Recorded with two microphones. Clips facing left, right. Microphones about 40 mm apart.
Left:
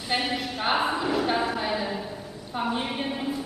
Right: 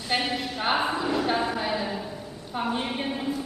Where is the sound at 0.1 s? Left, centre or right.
Centre.